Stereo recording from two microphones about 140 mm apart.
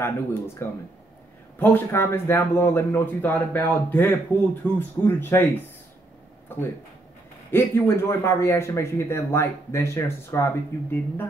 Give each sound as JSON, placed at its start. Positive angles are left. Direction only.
{"t": 0.0, "sound": "speech", "side_deg": 15}
{"t": 7.5, "sound": "speech", "side_deg": 15}